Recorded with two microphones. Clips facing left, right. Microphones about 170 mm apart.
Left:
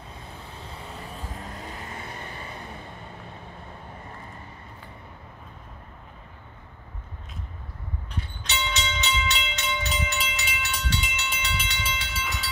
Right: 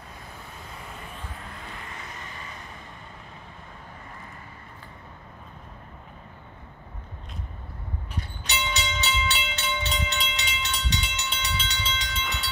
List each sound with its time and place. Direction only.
0.6 s vehicle: 30° left (ahead or behind)
8.1 s train: 5° right (ahead or behind)